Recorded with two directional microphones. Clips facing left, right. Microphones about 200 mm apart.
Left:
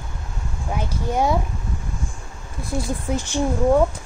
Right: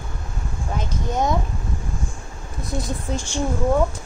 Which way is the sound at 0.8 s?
10° left (ahead or behind).